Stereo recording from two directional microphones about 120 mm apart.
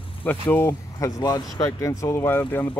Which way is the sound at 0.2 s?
15° left (ahead or behind).